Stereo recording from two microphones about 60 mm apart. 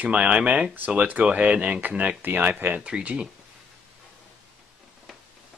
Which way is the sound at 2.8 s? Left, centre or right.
Centre.